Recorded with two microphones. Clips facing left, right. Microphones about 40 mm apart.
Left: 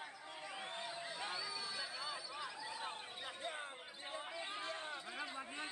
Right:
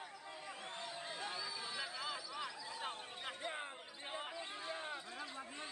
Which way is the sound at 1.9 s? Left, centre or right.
Centre.